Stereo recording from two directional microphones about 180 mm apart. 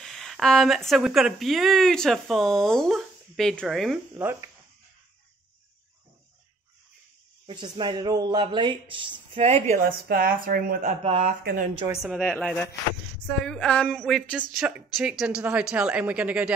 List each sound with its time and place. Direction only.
0.0 s speech: centre (ahead or behind)
4.1 s speech: 15° right (ahead or behind)
7.4 s speech: 25° right (ahead or behind)
9.8 s speech: 55° right (ahead or behind)
11.1 s speech: 30° right (ahead or behind)
11.4 s speech: 50° right (ahead or behind)
12.0 s speech: centre (ahead or behind)